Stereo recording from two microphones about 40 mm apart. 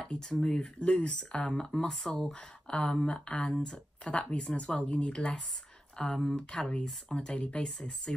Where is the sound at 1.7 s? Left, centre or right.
Centre.